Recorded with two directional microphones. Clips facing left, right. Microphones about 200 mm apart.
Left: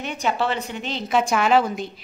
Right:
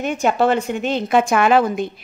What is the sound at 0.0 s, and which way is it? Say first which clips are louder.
A woman's voice: right 7 dB; 50° right (ahead or behind).